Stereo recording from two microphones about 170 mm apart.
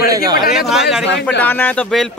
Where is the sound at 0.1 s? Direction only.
25° right (ahead or behind).